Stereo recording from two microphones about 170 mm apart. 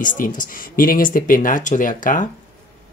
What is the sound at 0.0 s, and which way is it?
Speech, 50° left (ahead or behind).